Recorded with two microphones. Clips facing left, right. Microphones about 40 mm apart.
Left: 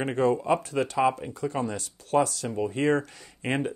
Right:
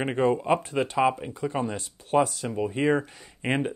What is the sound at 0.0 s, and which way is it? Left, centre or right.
Speech, right.